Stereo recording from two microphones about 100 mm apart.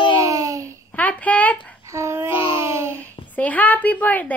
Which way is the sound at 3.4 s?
15° left (ahead or behind).